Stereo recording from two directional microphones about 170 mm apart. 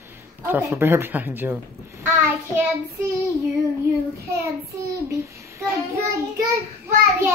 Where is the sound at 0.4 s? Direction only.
15° right (ahead or behind).